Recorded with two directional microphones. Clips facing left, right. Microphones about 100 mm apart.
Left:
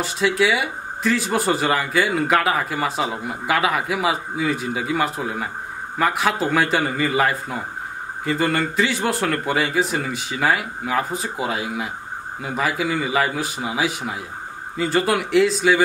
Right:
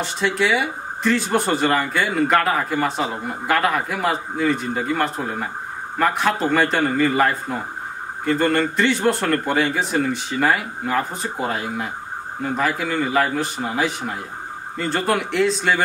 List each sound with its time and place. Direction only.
0.0 s speech: centre (ahead or behind)